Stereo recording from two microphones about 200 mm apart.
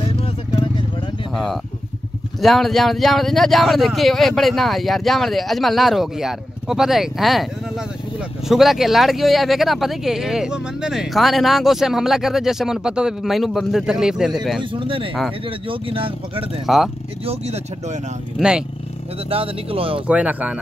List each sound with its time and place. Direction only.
0.2 s vehicle: 25° left (ahead or behind)
1.3 s speech: centre (ahead or behind)
8.5 s speech: centre (ahead or behind)
14.6 s speech: 25° right (ahead or behind)
16.6 s speech: centre (ahead or behind)
18.4 s speech: 5° right (ahead or behind)
19.2 s speech: 30° right (ahead or behind)
20.1 s speech: 5° right (ahead or behind)